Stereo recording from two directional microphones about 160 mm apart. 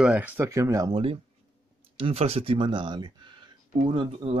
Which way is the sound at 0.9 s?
35° right (ahead or behind).